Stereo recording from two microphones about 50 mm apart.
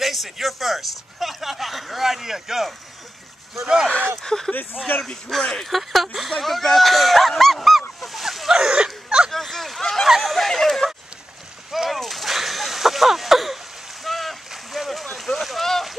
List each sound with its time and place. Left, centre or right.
0.0 s a man's voice: centre
4.2 s a man's voice: centre
8.0 s a sound: centre
9.3 s a sound: centre
11.7 s whip: centre
14.0 s boat: centre
15.0 s speech: centre